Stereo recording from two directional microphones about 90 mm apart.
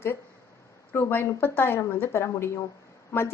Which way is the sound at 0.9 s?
25° left (ahead or behind).